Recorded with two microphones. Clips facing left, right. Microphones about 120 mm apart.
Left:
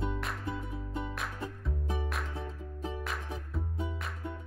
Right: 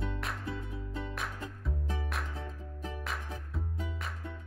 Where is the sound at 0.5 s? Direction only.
15° left (ahead or behind).